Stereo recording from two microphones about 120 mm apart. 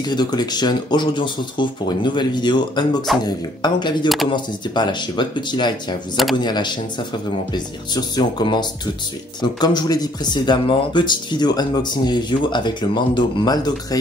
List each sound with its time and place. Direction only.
0.0 s speech: 35° left (ahead or behind)